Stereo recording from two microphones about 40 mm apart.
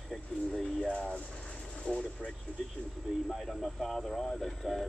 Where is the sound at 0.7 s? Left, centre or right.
Centre.